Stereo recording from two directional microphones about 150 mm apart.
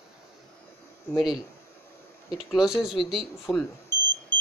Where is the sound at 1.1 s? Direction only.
Centre (ahead or behind).